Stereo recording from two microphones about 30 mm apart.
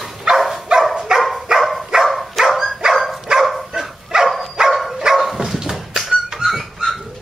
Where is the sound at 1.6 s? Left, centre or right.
Centre.